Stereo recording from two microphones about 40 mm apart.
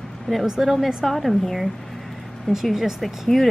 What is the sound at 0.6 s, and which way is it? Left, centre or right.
A woman's voice, centre.